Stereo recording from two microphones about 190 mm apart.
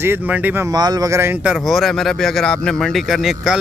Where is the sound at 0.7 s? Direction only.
20° right (ahead or behind).